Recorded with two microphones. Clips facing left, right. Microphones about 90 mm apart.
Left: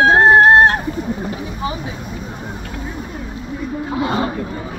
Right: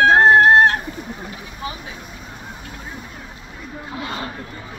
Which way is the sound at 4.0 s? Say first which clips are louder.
Left 10 dB; 15° left (ahead or behind).